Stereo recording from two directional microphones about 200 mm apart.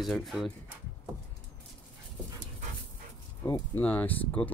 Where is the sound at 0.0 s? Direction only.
Centre (ahead or behind).